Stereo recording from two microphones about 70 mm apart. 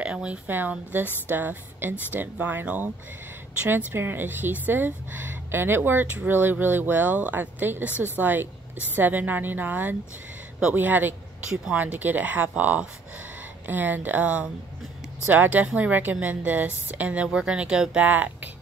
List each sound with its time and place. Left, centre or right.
0.0 s speech: centre
0.5 s speech: right; by 18.0 s centre
18.0 s speech: right